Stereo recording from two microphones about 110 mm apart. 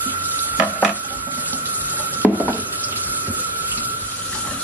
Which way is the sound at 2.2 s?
15° right (ahead or behind).